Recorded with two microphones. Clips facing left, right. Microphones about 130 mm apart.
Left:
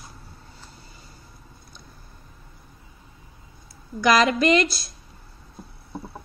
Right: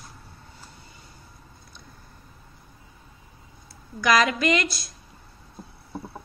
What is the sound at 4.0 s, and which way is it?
Speech, 30° left (ahead or behind).